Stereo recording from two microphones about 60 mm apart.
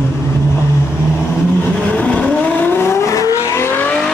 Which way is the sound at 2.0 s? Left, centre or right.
Centre.